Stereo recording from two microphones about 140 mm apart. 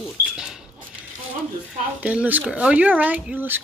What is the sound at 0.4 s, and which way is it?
Dog, 5° right (ahead or behind).